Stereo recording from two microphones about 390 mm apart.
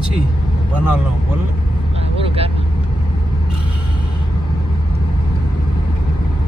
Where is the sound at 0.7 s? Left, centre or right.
Centre.